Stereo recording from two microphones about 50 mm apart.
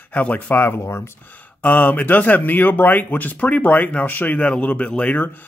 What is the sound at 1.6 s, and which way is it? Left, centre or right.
Speech, left.